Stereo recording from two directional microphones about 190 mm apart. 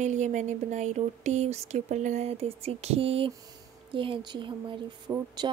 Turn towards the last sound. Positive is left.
turn(degrees=-15)  # may be behind; listen again after turning